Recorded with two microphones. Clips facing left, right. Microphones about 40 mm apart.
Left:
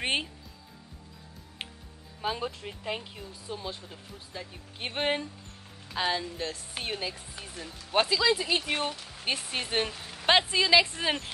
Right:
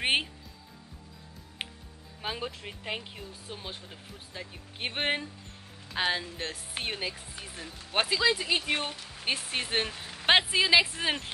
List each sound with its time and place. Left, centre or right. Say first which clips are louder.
2.2 s speech: left 3 dB; centre; by 6.6 s right
6.7 s speech: even; centre